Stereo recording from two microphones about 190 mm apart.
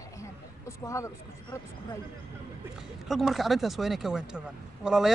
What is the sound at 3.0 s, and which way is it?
Speech, centre (ahead or behind).